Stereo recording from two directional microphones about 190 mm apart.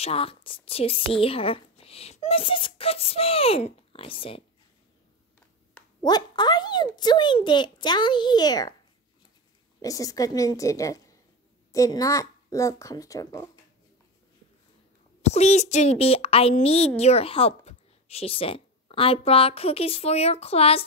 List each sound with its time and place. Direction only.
0.0 s a woman's voice: 30° left (ahead or behind)
6.0 s a child's voice: 20° left (ahead or behind)
9.8 s speech: 20° left (ahead or behind)
15.2 s a woman's voice: 35° left (ahead or behind)